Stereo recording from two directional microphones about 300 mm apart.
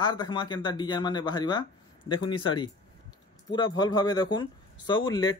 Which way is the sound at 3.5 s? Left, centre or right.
Centre.